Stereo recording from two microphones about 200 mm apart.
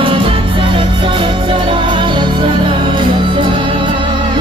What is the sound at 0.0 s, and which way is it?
Music, 25° right (ahead or behind).